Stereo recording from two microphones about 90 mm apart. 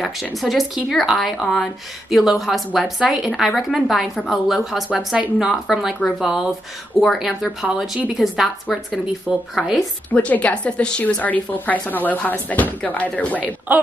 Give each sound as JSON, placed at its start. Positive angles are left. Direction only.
{"t": 0.0, "sound": "a woman's voice", "side_deg": 0}
{"t": 10.1, "sound": "a woman's voice", "side_deg": 15}
{"t": 13.7, "sound": "speech", "side_deg": -15}